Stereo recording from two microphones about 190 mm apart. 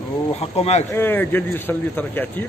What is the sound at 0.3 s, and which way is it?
Speech, 35° left (ahead or behind).